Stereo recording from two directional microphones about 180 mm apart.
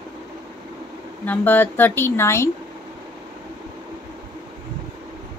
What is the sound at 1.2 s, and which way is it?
A woman's voice, 10° left (ahead or behind).